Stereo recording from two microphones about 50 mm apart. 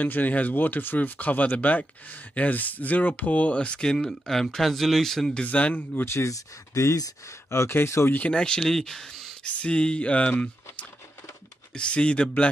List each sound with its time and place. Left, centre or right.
0.0 s speech: left
3.9 s speech: centre
5.4 s speech: left
6.0 s speech: left
8.3 s speech: centre
9.4 s speech: left